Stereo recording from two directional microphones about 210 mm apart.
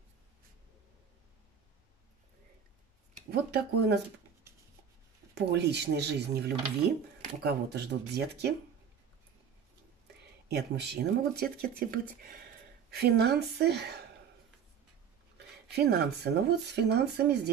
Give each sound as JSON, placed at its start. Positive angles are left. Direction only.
{"t": 3.3, "sound": "speech", "side_deg": -50}
{"t": 5.3, "sound": "speech", "side_deg": -55}
{"t": 10.5, "sound": "speech", "side_deg": -50}
{"t": 15.3, "sound": "speech", "side_deg": -50}